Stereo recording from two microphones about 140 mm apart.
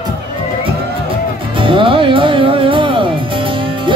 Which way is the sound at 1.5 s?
40° right (ahead or behind).